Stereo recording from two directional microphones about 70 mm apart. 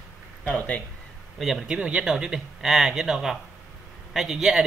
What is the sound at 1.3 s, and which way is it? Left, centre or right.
Speech, centre.